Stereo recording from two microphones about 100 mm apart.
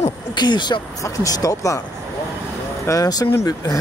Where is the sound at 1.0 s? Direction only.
35° left (ahead or behind).